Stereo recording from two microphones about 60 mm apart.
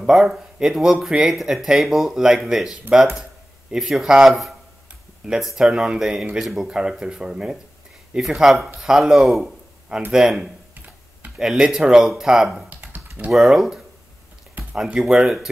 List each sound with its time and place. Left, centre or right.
0.0 s speech: centre
12.6 s typing: right
13.4 s speech: centre
14.6 s a sound: right
14.9 s speech: centre